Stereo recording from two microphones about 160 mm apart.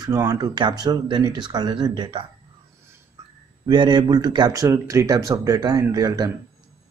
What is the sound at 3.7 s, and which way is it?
Speech, 30° right (ahead or behind).